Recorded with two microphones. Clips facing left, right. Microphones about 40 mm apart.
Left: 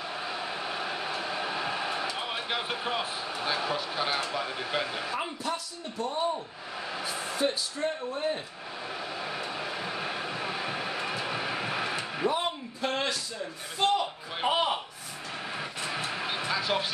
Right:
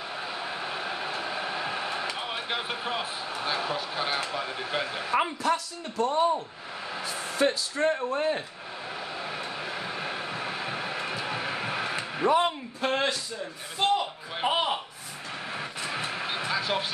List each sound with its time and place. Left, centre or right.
0.1 s a sound: centre
2.1 s speech: centre
5.4 s speech: right
7.1 s speech: centre
7.3 s speech: right
9.1 s train: centre
12.8 s a sound: right
13.7 s slap: centre
15.5 s vehicle: centre